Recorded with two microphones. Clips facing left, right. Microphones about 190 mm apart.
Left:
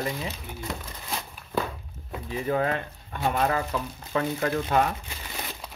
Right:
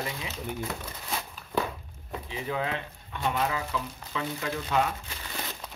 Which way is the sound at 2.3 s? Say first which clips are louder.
Left 6 dB; 50° left (ahead or behind).